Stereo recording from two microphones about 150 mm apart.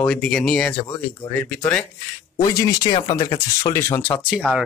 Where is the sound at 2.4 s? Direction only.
25° left (ahead or behind).